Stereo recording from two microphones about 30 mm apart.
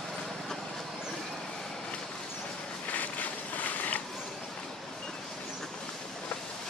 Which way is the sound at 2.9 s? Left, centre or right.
Left.